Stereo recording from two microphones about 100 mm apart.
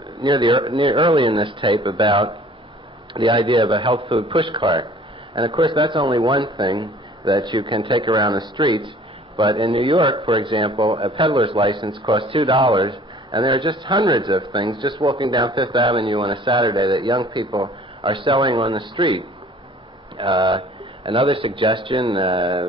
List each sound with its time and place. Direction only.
0.2 s a man's voice: 50° right (ahead or behind)
9.7 s a man's voice: 65° right (ahead or behind)
20.4 s a man's voice: 60° right (ahead or behind)